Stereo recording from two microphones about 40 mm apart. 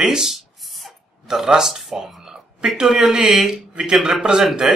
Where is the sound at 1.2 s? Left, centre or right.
Centre.